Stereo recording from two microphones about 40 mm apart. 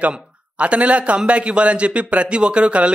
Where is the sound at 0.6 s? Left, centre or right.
Right.